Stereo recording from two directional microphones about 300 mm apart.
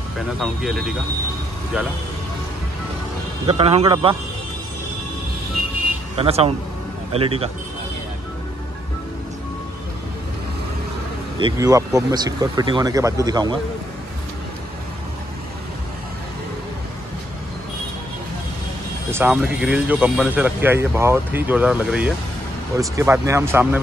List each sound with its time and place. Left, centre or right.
0.4 s speech: centre
3.4 s speech: centre
6.1 s speech: centre
11.3 s speech: centre
19.0 s speech: centre